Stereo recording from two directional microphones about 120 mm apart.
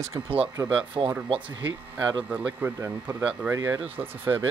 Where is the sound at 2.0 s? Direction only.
10° right (ahead or behind).